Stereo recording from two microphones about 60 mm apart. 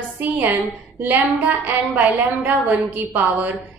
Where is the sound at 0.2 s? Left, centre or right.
Right.